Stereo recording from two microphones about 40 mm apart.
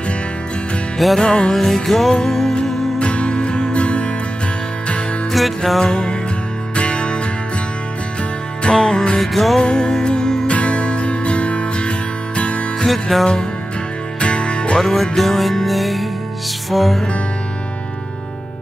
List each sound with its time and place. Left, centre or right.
0.9 s music: centre
1.2 s music: centre
1.5 s music: centre
3.0 s music: left
5.8 s music: centre
8.6 s music: centre
9.2 s music: centre
9.6 s music: centre
10.4 s music: left
12.8 s music: centre
13.2 s music: centre
14.8 s music: centre